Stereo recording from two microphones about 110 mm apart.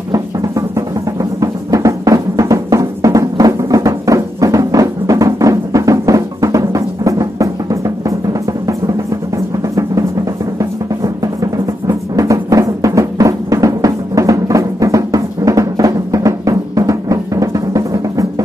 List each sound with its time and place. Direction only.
0.1 s music: 30° right (ahead or behind)
11.5 s music: 35° right (ahead or behind)